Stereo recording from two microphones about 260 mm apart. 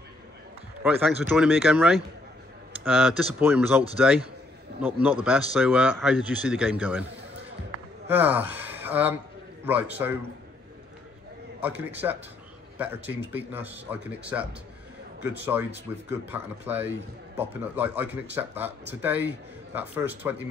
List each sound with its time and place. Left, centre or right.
0.8 s a man's voice: centre
5.2 s a man's voice: centre
8.1 s speech: centre
11.6 s speech: centre